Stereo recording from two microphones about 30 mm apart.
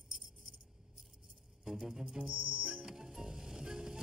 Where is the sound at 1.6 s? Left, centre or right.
Centre.